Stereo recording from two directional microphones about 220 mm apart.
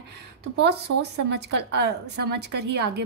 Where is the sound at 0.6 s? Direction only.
50° right (ahead or behind).